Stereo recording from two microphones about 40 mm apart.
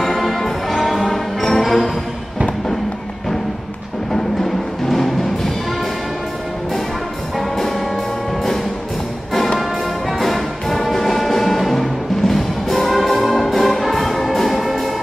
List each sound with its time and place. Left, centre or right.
0.0 s music: centre
4.1 s music: centre
7.3 s music: centre
9.6 s music: centre